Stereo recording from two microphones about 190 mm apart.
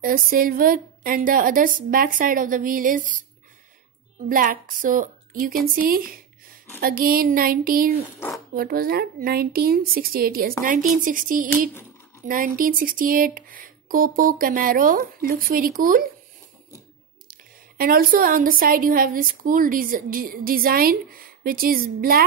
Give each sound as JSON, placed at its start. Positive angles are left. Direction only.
{"t": 0.0, "sound": "a woman's voice", "side_deg": -50}
{"t": 4.3, "sound": "a woman's voice", "side_deg": -45}
{"t": 17.3, "sound": "a woman's voice", "side_deg": -50}